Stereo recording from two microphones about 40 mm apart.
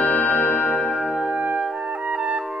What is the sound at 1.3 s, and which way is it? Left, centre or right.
Clarinet, right.